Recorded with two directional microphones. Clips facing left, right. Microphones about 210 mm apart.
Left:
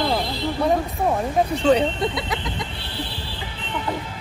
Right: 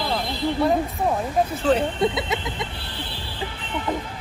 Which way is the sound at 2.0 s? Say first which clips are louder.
Right 2 dB; 25° right (ahead or behind).